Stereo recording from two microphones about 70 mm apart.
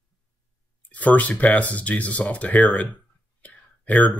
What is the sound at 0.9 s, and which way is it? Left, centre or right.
Speech, left.